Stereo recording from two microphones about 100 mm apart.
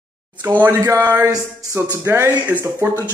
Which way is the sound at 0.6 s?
20° right (ahead or behind).